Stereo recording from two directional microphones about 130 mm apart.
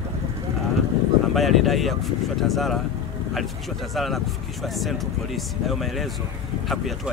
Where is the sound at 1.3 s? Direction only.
Centre (ahead or behind).